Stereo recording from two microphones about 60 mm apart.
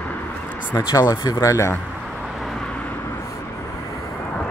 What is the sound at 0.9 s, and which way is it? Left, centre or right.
Speech, left.